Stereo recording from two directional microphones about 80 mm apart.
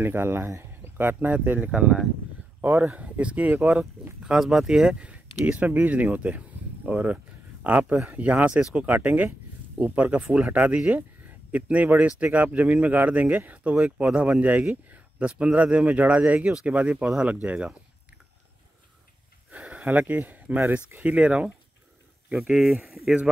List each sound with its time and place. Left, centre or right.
0.0 s speech: right
1.7 s speech: centre
4.2 s speech: centre
19.5 s speech: centre
22.5 s speech: centre
22.8 s speech: centre